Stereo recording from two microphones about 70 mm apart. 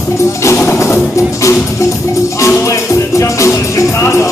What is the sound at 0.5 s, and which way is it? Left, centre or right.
Music, left.